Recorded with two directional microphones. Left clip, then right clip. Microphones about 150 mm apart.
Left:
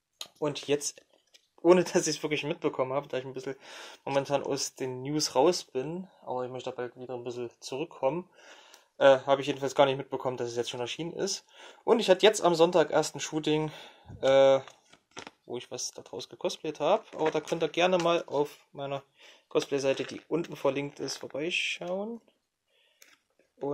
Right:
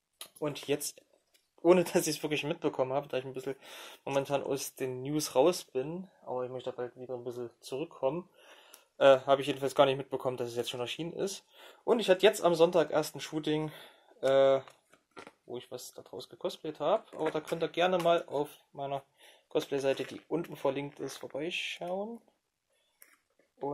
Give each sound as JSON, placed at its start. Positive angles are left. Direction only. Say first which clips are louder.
{"t": 0.2, "sound": "speech", "louder": "left 4 dB", "side_deg": 20}
{"t": 6.2, "sound": "speech", "louder": "left 2 dB", "side_deg": 25}